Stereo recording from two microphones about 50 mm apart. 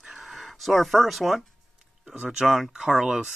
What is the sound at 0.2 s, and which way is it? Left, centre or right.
Speech, centre.